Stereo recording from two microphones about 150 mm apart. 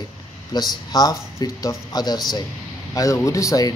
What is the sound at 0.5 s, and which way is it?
Speech, 25° left (ahead or behind).